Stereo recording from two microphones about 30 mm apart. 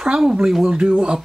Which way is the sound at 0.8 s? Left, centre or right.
Right.